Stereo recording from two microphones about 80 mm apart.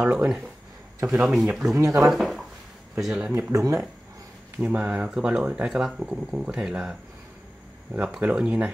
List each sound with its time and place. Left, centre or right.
0.1 s speech: centre
1.8 s speech: right
2.0 s speech: centre
3.5 s speech: right
4.6 s speech: centre
8.0 s speech: centre